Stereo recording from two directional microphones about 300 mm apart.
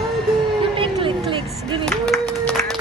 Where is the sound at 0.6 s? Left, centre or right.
Centre.